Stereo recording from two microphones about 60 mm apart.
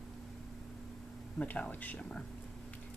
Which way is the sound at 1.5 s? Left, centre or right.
Left.